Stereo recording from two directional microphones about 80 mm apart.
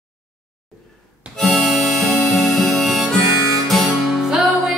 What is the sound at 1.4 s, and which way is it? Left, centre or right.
Harmonica, centre.